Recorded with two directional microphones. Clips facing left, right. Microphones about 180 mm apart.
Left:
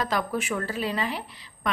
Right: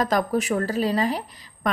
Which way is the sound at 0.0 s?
40° right (ahead or behind).